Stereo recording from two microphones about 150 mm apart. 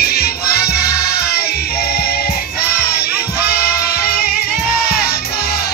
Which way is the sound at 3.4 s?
90° left.